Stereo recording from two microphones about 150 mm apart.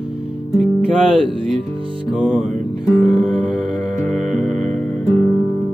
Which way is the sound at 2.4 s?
55° right (ahead or behind).